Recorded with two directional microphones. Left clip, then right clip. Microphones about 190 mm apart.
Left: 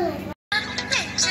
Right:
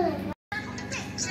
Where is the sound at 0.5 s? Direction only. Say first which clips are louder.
Left 12 dB; 35° left (ahead or behind).